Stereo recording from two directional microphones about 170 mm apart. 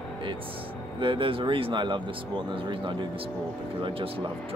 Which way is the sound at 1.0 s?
30° right (ahead or behind).